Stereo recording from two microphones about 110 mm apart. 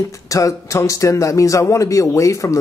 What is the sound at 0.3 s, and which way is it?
Speech, 30° left (ahead or behind).